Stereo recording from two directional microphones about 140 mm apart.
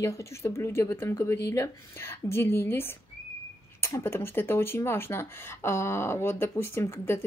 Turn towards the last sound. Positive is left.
turn(degrees=20)  # may be behind; listen again after turning